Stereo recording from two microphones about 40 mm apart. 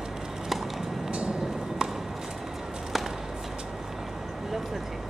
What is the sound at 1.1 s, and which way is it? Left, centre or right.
Vehicle, right.